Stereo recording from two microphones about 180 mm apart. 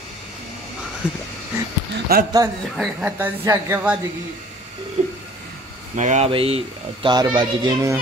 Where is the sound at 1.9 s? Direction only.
60° right (ahead or behind).